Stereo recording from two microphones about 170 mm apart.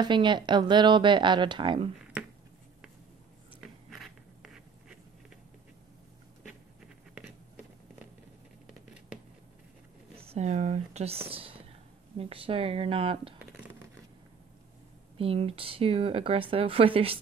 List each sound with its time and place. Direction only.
0.1 s speech: 25° right (ahead or behind)
3.6 s a sound: centre (ahead or behind)
10.2 s speech: 40° right (ahead or behind)
15.1 s speech: 35° right (ahead or behind)